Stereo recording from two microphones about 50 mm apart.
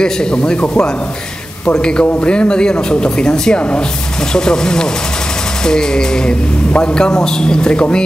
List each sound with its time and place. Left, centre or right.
0.0 s a man's voice: centre